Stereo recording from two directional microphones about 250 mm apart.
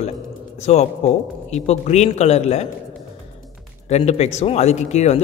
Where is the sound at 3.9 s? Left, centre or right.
Left.